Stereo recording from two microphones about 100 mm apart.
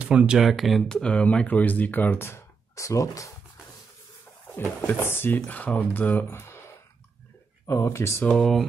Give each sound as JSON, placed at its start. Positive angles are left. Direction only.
{"t": 0.0, "sound": "speech", "side_deg": -10}
{"t": 4.6, "sound": "speech", "side_deg": 20}
{"t": 7.6, "sound": "speech", "side_deg": 25}
{"t": 8.2, "sound": "speech", "side_deg": 10}